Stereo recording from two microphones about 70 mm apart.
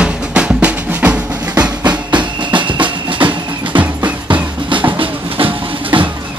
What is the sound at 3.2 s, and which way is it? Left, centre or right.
Music, right.